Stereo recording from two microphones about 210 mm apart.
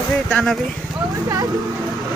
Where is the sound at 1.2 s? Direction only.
20° right (ahead or behind).